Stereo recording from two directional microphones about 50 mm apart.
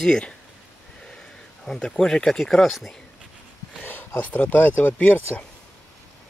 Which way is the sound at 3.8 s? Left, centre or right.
Left.